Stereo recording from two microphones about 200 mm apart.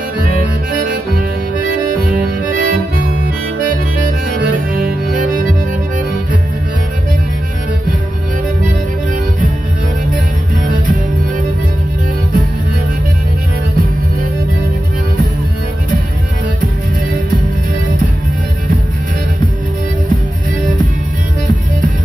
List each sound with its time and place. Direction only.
2.5 s harmonica: 45° right (ahead or behind)
3.6 s music: 45° right (ahead or behind)